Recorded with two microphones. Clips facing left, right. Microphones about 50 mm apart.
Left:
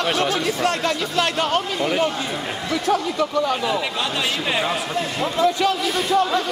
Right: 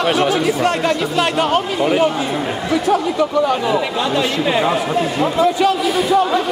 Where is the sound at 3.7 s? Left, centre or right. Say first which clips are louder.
Right 6 dB; centre.